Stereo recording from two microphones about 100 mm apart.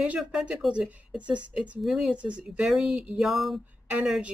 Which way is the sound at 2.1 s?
10° right (ahead or behind).